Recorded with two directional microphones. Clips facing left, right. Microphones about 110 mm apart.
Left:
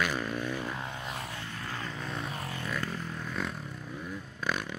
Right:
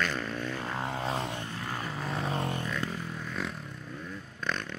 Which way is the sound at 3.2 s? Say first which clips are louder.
Left 1 dB; centre (ahead or behind).